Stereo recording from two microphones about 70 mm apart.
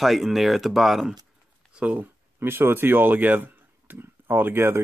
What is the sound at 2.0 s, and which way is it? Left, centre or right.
Speech, right.